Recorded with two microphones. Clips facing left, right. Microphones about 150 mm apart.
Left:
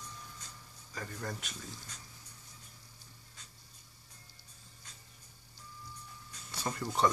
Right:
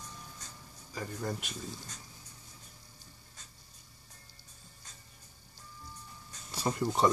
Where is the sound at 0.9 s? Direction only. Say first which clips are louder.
Right 4 dB; 15° right (ahead or behind).